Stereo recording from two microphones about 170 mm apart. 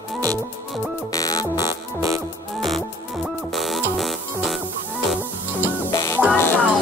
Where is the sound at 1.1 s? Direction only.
20° left (ahead or behind).